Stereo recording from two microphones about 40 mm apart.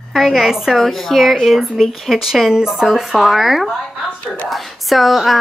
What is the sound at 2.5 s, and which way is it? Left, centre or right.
Speech, centre.